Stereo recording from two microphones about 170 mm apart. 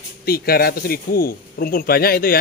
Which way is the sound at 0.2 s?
65° left (ahead or behind).